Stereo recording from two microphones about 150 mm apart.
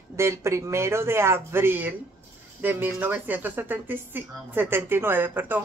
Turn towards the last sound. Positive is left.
turn(degrees=-15)  # may be behind; listen again after turning